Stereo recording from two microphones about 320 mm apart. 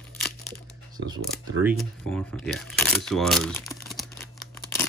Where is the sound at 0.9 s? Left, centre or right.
Centre.